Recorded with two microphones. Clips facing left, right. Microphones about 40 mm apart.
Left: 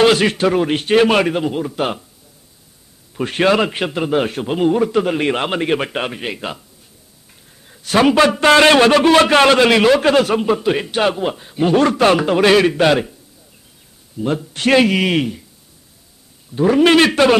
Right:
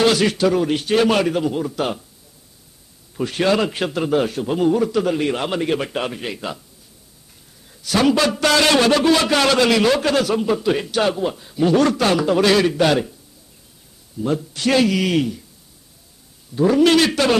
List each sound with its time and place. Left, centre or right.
0.0 s a man's voice: left
3.2 s a man's voice: left
7.7 s a sound: left
8.0 s a man's voice: left
14.2 s a man's voice: left
16.5 s a man's voice: left